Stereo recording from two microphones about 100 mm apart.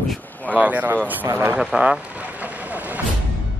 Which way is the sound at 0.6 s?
15° right (ahead or behind).